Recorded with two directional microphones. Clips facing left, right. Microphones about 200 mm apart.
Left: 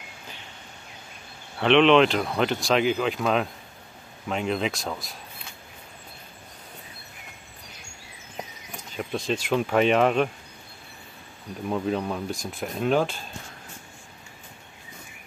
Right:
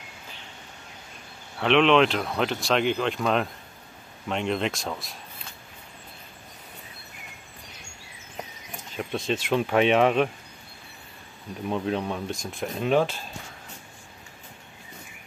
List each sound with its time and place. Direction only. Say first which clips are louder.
1.6 s speech: left 2 dB; centre (ahead or behind)
8.9 s speech: even; centre (ahead or behind)
11.7 s speech: left 1 dB; centre (ahead or behind)